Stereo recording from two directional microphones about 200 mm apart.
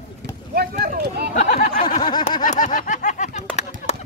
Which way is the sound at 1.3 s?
35° left (ahead or behind).